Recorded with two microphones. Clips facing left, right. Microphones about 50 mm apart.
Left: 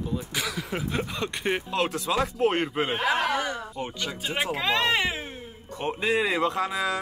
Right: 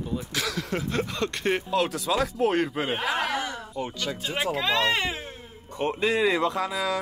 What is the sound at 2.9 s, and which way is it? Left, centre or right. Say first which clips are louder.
Speech: left 3 dB; centre.